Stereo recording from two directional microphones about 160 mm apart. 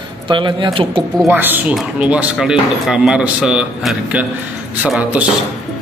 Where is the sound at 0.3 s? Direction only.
30° right (ahead or behind).